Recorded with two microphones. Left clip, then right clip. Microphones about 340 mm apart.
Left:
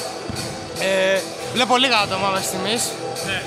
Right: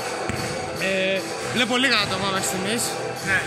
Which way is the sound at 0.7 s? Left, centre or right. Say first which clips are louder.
Left 5 dB; centre.